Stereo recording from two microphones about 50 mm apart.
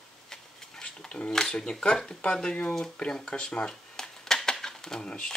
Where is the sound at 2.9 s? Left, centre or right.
Centre.